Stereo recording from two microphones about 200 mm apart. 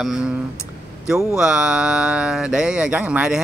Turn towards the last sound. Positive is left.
turn(degrees=-5)  # may be behind; listen again after turning